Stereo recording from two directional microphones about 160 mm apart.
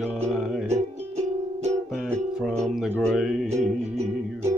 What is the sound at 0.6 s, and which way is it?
Music, 45° right (ahead or behind).